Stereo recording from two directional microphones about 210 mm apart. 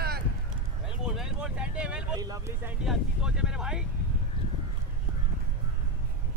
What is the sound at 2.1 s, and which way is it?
Speech, 15° right (ahead or behind).